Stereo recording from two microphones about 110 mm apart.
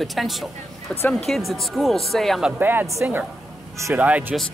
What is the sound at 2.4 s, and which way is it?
Speech, 15° right (ahead or behind).